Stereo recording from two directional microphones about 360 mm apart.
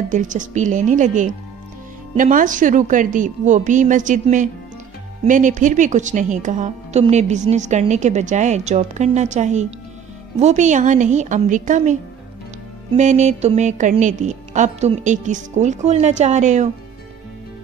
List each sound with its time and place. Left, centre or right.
0.1 s speech: right